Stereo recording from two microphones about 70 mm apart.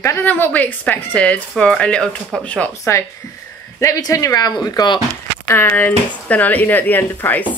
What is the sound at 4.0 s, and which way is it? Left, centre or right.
Speech, left.